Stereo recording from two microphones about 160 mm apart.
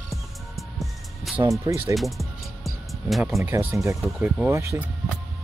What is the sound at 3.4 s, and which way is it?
Speech, 15° right (ahead or behind).